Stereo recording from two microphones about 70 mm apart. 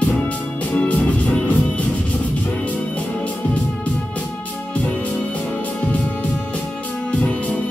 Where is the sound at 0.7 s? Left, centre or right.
Left.